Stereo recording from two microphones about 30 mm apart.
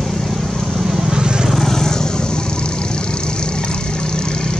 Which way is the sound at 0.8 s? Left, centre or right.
Centre.